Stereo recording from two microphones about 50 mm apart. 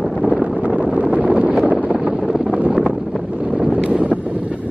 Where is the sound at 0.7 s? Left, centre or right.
Right.